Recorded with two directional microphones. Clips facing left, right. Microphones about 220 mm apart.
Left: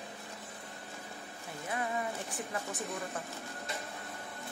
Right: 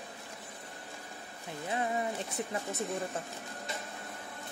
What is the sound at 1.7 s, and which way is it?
Speech, 25° right (ahead or behind).